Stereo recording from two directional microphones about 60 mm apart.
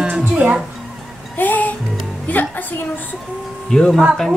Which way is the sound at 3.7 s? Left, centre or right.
Centre.